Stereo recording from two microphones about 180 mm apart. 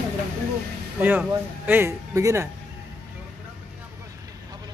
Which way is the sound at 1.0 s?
10° right (ahead or behind).